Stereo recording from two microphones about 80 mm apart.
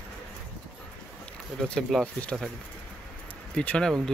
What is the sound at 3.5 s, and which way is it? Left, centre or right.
Speech, centre.